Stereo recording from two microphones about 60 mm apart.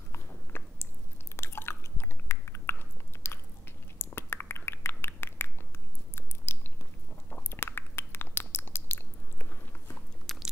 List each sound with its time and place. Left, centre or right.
0.1 s biting: left
1.3 s chewing: left
4.0 s a sound: left
10.3 s biting: centre